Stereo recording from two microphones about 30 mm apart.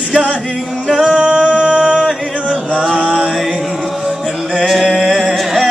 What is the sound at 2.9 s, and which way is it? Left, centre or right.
Mantra, right.